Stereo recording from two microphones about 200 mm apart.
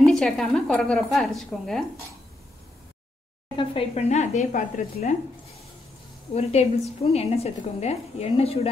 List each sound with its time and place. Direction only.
0.0 s a woman's voice: centre (ahead or behind)
3.5 s a woman's voice: 30° left (ahead or behind)
6.3 s a woman's voice: 30° left (ahead or behind)